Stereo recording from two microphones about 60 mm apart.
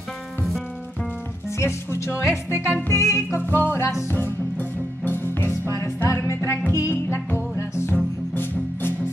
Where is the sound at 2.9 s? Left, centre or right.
Left.